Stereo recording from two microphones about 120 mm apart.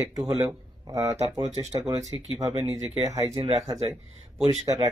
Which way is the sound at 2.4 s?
30° right (ahead or behind).